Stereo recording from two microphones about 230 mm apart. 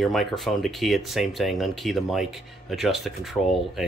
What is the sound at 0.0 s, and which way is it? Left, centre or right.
Speech, centre.